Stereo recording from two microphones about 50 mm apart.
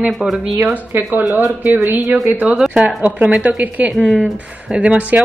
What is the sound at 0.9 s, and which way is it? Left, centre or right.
Speech, right.